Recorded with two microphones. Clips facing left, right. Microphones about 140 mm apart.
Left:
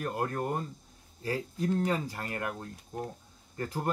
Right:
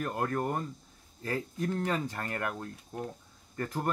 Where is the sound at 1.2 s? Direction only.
15° left (ahead or behind).